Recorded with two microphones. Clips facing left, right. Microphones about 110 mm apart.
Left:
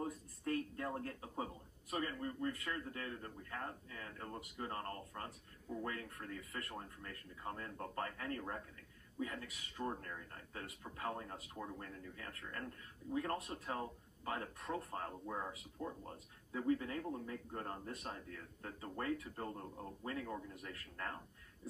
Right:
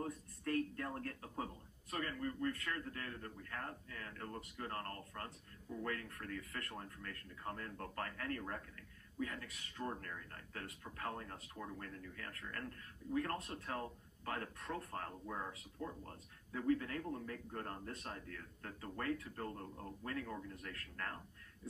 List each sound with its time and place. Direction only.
0.0 s speech: 20° left (ahead or behind)